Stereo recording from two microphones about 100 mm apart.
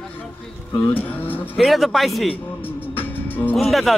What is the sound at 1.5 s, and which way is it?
Speech, centre (ahead or behind).